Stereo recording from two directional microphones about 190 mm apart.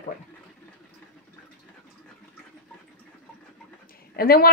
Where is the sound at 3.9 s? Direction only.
50° left (ahead or behind).